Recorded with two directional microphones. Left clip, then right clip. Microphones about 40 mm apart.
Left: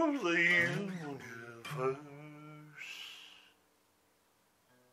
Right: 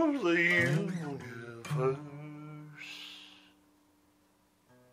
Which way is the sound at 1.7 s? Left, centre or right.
Centre.